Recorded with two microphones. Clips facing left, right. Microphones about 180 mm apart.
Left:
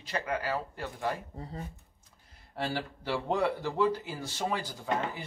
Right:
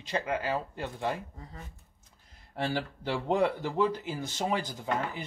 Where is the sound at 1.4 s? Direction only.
35° left (ahead or behind).